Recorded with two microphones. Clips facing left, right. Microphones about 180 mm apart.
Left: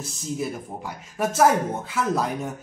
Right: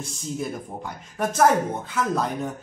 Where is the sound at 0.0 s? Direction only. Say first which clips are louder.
Left 1 dB; 5° left (ahead or behind).